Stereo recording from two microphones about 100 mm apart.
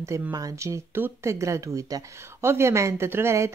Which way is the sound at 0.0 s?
35° right (ahead or behind).